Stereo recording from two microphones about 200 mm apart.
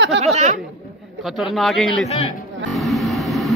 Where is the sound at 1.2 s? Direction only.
Centre (ahead or behind).